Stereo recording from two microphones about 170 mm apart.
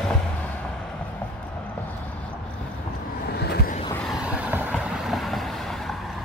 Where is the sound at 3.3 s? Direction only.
75° left (ahead or behind).